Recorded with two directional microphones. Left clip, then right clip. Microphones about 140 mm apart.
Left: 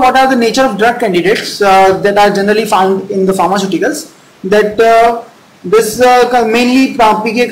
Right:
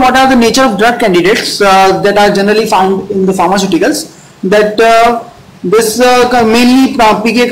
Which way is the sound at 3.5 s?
10° right (ahead or behind).